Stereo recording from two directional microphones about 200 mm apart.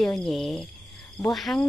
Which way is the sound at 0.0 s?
Centre (ahead or behind).